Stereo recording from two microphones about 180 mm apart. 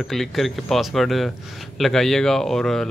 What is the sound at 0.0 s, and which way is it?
A man's voice, centre (ahead or behind).